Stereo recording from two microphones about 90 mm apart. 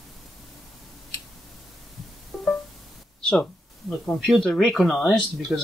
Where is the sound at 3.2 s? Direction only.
5° left (ahead or behind).